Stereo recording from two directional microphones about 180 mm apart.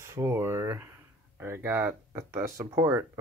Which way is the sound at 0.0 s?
15° right (ahead or behind).